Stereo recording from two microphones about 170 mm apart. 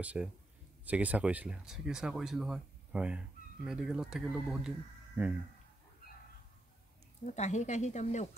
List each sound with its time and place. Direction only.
0.0 s speech: 10° right (ahead or behind)
7.2 s speech: 45° left (ahead or behind)